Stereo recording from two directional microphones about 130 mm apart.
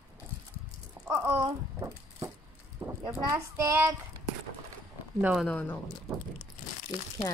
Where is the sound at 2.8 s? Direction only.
35° right (ahead or behind).